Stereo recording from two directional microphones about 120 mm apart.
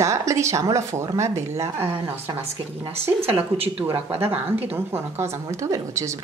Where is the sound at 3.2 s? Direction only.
55° right (ahead or behind).